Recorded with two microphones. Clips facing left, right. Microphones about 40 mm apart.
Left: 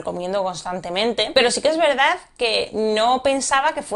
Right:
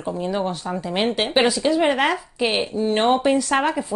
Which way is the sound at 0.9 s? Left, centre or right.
Centre.